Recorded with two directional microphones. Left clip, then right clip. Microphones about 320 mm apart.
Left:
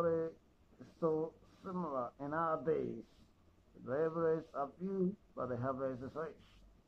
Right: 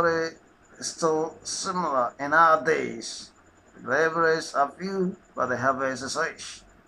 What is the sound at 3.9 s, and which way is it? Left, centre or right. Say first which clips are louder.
Speech: right 13 dB; centre.